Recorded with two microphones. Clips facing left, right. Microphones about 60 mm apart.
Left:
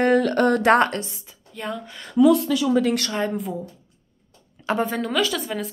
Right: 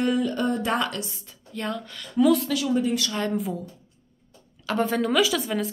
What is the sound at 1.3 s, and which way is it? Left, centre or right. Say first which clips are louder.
Speech: even; centre.